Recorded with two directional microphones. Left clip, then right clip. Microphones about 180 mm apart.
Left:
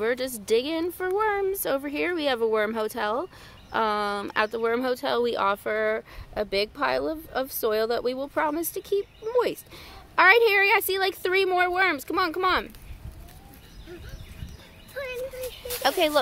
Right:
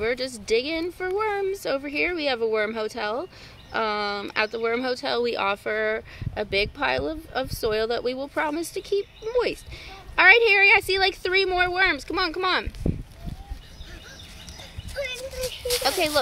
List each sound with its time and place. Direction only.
0.0 s speech: 25° left (ahead or behind)
15.8 s speech: 20° left (ahead or behind)